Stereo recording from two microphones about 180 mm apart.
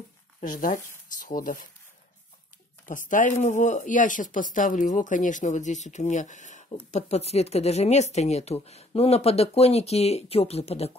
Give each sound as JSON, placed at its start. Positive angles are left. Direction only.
{"t": 0.4, "sound": "speech", "side_deg": 45}
{"t": 2.9, "sound": "speech", "side_deg": 45}